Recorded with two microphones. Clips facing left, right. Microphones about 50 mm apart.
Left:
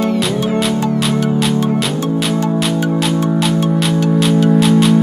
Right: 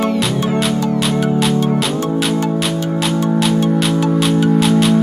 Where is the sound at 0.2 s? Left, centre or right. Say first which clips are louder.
Left 1 dB; centre.